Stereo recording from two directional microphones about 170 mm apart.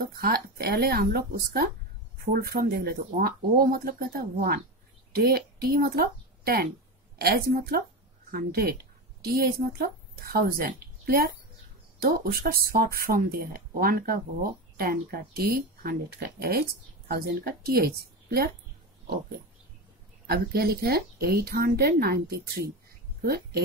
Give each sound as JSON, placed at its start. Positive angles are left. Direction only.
{"t": 0.0, "sound": "a woman's voice", "side_deg": -65}
{"t": 20.2, "sound": "speech", "side_deg": -65}